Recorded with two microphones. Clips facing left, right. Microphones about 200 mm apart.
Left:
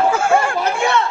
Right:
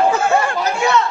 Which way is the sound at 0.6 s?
30° left (ahead or behind).